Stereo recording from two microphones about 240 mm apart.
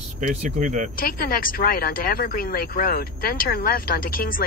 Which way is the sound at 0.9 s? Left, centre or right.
Left.